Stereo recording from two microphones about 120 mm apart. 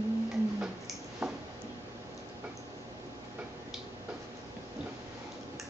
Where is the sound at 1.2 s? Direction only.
5° right (ahead or behind).